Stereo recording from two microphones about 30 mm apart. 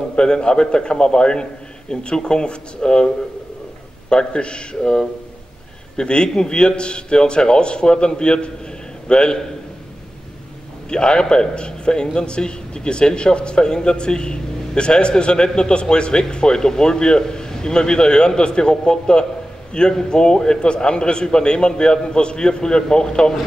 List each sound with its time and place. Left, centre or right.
0.1 s a man's voice: left
4.1 s a man's voice: left
10.9 s a man's voice: left